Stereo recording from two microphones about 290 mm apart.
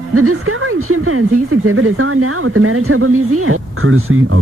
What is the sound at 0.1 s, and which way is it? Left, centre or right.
Speech, right.